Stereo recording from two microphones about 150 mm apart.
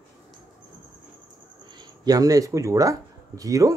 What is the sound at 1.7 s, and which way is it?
Speech, 25° right (ahead or behind).